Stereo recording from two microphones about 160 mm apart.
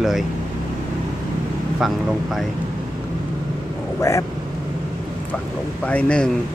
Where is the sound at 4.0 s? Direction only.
20° left (ahead or behind).